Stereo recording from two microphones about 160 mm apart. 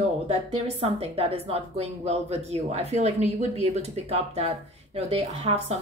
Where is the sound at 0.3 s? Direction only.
35° right (ahead or behind).